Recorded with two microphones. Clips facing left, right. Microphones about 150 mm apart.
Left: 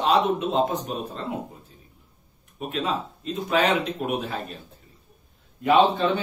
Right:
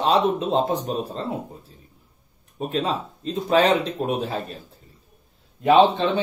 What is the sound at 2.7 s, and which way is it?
Speech, 30° right (ahead or behind).